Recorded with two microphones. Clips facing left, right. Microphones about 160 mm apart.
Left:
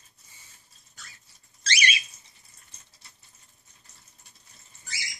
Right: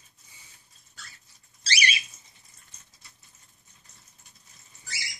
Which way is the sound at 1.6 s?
30° right (ahead or behind).